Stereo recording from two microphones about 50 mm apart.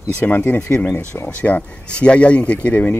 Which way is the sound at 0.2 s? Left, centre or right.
Left.